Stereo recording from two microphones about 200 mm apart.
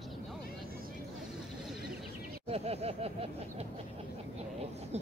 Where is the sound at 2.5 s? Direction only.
30° right (ahead or behind).